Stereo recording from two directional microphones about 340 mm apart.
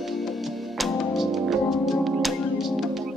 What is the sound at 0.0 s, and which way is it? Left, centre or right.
Music, centre.